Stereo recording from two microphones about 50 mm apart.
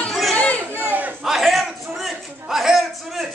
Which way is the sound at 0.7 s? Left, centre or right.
Right.